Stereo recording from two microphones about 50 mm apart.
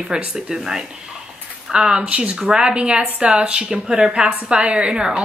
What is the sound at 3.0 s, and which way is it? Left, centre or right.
Speech, right.